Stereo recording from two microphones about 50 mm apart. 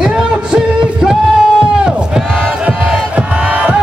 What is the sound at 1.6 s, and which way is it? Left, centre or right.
Crowd, centre.